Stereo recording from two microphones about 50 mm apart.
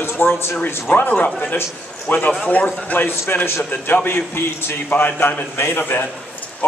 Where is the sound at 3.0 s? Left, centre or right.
Left.